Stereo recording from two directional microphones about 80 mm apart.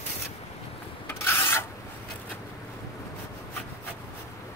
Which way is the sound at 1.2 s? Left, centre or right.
Left.